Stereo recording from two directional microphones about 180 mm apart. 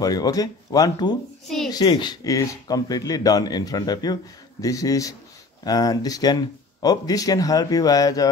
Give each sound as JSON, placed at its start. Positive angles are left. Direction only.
{"t": 0.0, "sound": "speech", "side_deg": 20}